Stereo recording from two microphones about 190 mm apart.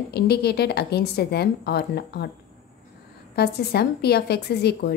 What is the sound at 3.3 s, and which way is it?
A woman's voice, 55° left (ahead or behind).